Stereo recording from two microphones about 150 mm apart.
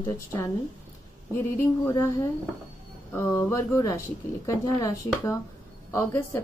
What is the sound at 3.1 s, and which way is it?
A woman's voice, 15° left (ahead or behind).